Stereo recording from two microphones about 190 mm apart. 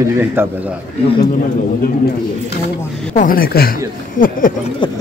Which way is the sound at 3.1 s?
45° left (ahead or behind).